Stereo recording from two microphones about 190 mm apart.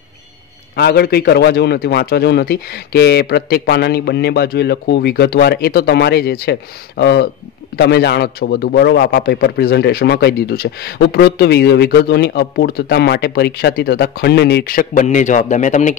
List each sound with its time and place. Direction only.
0.7 s a man's voice: 55° left (ahead or behind); by 16.0 s 40° left (ahead or behind)